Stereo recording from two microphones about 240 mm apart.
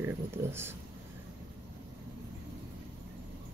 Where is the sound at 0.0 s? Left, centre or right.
Centre.